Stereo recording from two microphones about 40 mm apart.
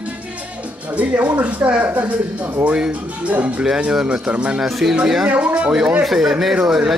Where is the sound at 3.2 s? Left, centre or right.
Right.